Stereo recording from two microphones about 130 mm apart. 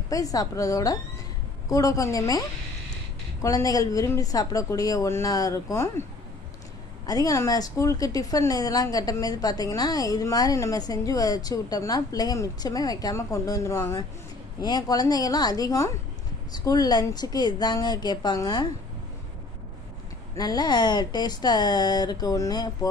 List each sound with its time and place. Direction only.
0.1 s a woman's voice: 25° left (ahead or behind)
3.4 s a woman's voice: 25° left (ahead or behind)
7.1 s a woman's voice: 25° left (ahead or behind)
20.3 s speech: 30° left (ahead or behind)